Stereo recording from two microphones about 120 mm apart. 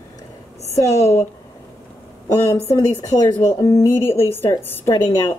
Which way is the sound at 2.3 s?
25° left (ahead or behind).